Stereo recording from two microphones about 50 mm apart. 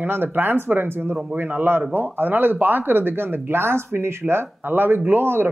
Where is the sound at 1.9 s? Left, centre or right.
Right.